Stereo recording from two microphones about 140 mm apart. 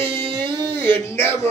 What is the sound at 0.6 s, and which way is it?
Speech, 15° left (ahead or behind).